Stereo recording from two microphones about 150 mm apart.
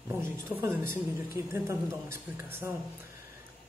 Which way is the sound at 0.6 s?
15° right (ahead or behind).